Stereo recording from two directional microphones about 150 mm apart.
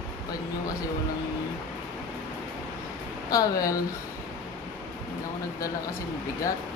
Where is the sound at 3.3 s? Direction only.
25° left (ahead or behind).